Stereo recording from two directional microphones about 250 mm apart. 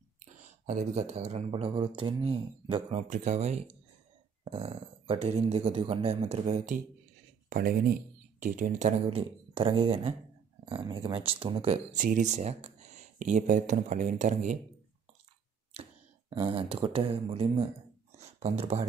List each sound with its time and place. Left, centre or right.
0.2 s speech: right
15.7 s speech: right